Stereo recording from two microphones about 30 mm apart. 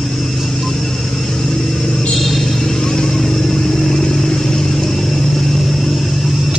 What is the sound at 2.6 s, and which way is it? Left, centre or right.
Vehicle, left.